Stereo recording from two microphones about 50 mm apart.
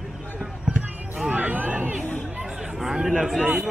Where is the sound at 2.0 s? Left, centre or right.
Left.